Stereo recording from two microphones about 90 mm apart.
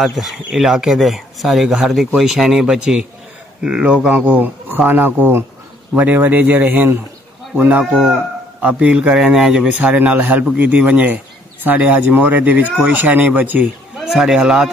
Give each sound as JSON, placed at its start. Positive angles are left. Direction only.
{"t": 0.0, "sound": "a man's voice", "side_deg": -5}
{"t": 14.1, "sound": "a man's voice", "side_deg": -5}